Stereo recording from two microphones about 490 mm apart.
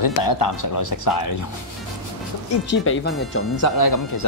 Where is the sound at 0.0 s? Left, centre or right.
Left.